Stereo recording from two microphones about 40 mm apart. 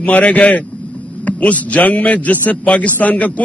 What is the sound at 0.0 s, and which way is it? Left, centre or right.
A man's voice, left.